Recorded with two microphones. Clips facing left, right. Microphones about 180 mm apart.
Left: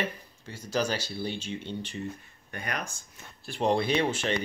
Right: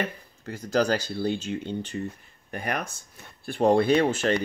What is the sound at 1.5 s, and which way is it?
Speech, 60° right (ahead or behind).